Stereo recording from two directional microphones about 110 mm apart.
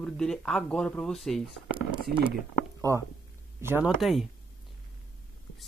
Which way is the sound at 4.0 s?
Centre (ahead or behind).